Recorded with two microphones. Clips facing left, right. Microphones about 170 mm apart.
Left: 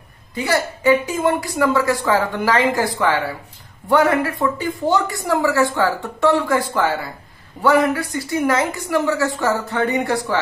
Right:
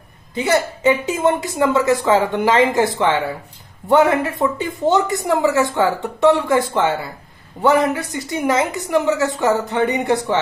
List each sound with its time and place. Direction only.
0.3 s speech: 20° right (ahead or behind)